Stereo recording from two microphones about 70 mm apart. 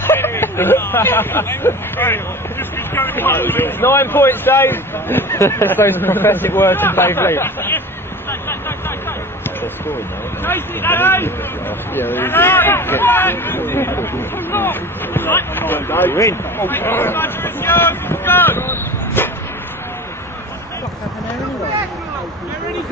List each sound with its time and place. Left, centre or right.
0.0 s speech: left
8.3 s a sound: left
10.4 s speech: left